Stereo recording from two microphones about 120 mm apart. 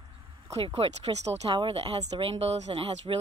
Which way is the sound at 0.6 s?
55° right (ahead or behind).